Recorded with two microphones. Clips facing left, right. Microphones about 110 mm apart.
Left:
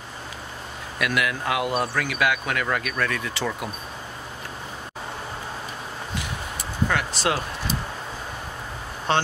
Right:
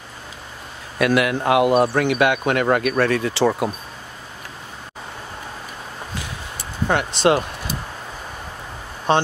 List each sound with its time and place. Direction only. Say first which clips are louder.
0.9 s speech: right 7 dB; 30° right (ahead or behind)
6.9 s speech: right 9 dB; 25° right (ahead or behind)